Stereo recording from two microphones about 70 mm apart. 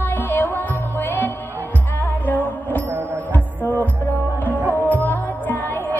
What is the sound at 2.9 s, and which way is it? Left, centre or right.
Music, right.